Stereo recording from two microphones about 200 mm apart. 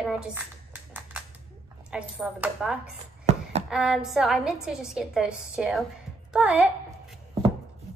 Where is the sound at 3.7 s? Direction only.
Centre (ahead or behind).